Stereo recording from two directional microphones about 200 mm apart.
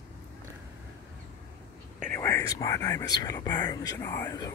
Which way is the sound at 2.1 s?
15° left (ahead or behind).